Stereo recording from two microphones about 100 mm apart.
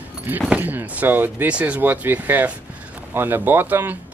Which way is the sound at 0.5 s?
15° right (ahead or behind).